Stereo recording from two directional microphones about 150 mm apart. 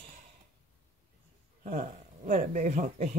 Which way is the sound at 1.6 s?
65° right (ahead or behind).